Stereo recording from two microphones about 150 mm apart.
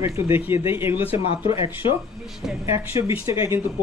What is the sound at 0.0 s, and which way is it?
Speech, 15° right (ahead or behind).